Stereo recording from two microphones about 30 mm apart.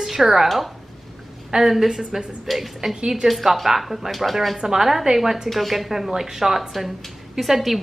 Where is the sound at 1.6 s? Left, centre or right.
Centre.